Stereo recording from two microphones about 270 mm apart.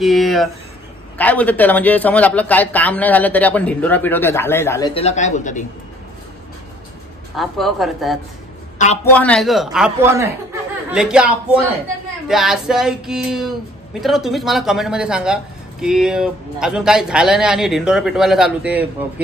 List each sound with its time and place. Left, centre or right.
0.0 s a man's voice: centre; by 5.7 s left
7.3 s speech: centre
8.7 s a man's voice: left
9.1 s speech: centre